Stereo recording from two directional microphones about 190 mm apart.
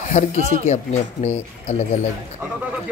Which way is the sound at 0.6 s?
35° left (ahead or behind).